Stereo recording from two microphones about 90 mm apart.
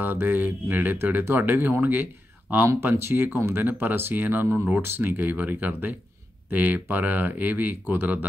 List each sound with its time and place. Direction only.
0.0 s speech: 20° right (ahead or behind)